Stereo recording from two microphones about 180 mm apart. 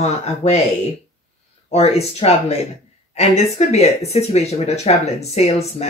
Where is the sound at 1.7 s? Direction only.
35° left (ahead or behind).